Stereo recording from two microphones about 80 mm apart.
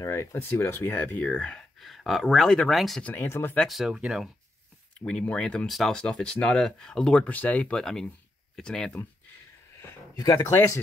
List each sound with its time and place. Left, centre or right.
0.1 s speech: left; by 1.6 s centre
1.8 s speech: centre
3.0 s speech: left
3.6 s speech: centre
4.9 s speech: centre
5.7 s speech: centre
5.9 s speech: centre
7.8 s speech: centre
10.1 s speech: left